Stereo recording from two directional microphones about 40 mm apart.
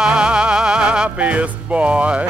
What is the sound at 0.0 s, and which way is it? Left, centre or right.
Music, right.